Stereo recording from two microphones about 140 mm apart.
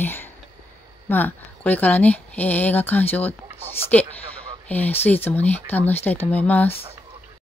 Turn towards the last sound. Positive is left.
turn(degrees=10)  # may be behind; listen again after turning